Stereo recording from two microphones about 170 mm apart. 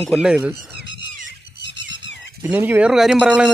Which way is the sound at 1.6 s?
90° left.